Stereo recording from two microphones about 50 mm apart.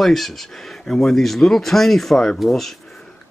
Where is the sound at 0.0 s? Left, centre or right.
Centre.